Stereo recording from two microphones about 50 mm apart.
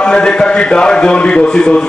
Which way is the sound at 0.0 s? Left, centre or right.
Centre.